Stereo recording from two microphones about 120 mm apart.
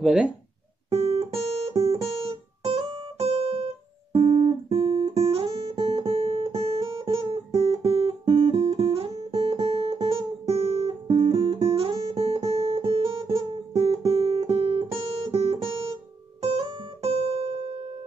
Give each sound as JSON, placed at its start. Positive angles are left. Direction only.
{"t": 0.0, "sound": "speech", "side_deg": -5}
{"t": 0.8, "sound": "guitar", "side_deg": -55}
{"t": 16.4, "sound": "music", "side_deg": -55}